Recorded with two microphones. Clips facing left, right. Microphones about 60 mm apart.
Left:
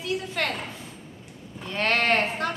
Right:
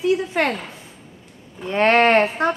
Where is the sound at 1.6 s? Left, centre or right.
Right.